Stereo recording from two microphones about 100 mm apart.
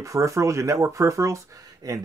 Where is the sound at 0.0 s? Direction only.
30° right (ahead or behind).